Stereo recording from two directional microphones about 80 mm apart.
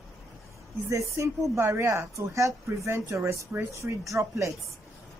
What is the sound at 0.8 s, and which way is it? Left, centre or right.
Speech, right.